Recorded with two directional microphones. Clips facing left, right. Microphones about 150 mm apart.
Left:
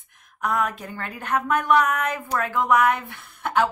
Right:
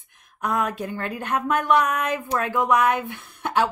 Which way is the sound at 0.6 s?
20° right (ahead or behind).